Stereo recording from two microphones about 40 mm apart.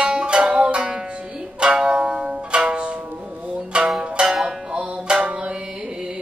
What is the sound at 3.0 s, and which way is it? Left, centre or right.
Music, right.